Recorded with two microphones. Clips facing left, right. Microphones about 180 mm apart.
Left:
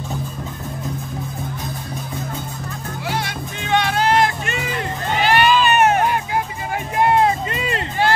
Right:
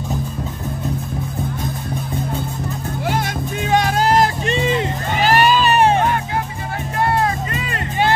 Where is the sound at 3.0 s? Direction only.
50° right (ahead or behind); by 4.9 s 20° right (ahead or behind).